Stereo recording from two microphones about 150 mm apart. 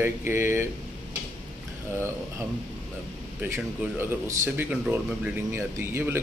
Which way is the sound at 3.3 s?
10° right (ahead or behind).